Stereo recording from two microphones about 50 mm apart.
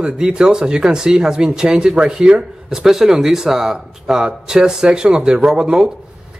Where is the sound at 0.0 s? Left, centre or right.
Centre.